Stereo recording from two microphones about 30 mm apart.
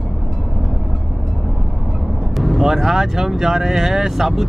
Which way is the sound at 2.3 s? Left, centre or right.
Centre.